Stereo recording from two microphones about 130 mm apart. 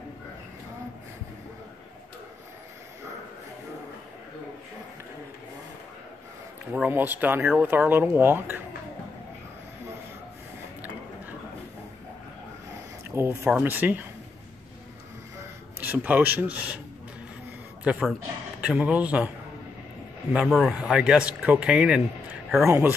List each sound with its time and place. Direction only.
6.7 s speech: 15° right (ahead or behind)
13.1 s speech: 20° right (ahead or behind)
15.8 s speech: 15° right (ahead or behind)
17.9 s speech: 10° right (ahead or behind)
20.3 s speech: centre (ahead or behind)
22.7 s speech: 15° right (ahead or behind)